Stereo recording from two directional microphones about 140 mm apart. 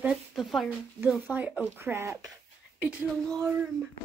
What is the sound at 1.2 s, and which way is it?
Speech, 10° right (ahead or behind).